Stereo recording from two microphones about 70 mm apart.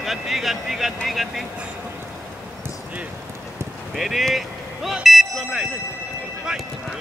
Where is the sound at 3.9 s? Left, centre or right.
Centre.